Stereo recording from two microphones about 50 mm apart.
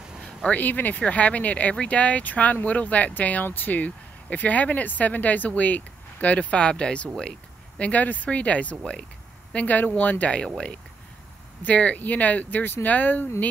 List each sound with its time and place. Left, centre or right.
0.5 s speech: left
7.2 s a sound: centre
7.8 s speech: left
11.6 s speech: left